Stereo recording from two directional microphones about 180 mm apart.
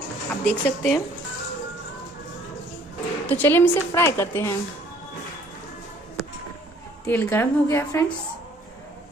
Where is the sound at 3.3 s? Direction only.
10° left (ahead or behind).